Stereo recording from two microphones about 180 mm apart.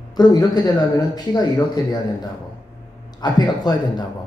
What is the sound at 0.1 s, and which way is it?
Speech, 20° left (ahead or behind).